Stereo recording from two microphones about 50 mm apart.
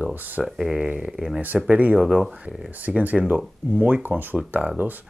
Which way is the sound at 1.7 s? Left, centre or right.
Right.